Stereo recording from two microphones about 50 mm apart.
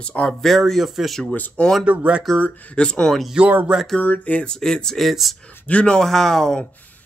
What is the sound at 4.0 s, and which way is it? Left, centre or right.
Speech, left.